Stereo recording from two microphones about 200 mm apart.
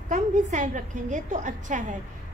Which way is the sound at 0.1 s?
35° right (ahead or behind).